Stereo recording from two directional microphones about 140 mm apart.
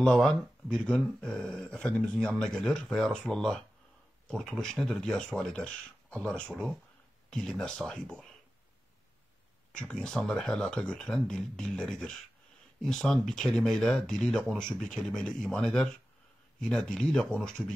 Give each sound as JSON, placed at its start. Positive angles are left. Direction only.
{"t": 0.0, "sound": "speech", "side_deg": 5}
{"t": 9.7, "sound": "speech", "side_deg": 5}